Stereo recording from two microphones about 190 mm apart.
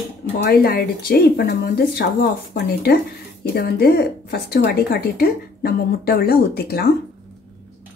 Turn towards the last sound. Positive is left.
turn(degrees=55)  # may be behind; listen again after turning